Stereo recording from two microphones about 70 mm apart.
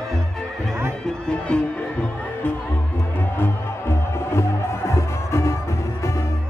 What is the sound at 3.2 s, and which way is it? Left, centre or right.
Music, left.